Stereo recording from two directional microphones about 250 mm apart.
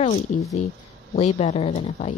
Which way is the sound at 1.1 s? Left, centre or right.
Left.